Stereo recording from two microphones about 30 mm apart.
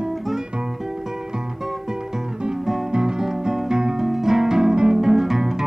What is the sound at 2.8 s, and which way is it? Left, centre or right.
Music, right.